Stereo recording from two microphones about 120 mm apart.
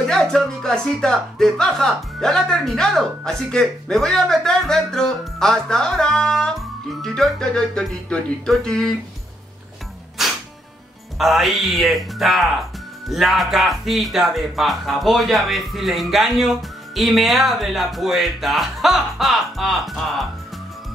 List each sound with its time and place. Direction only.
0.0 s speech: 5° left (ahead or behind)
10.2 s music: centre (ahead or behind)
11.1 s speech: centre (ahead or behind)